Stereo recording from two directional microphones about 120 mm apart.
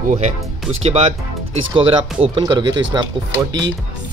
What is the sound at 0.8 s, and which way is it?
Speech, 60° right (ahead or behind).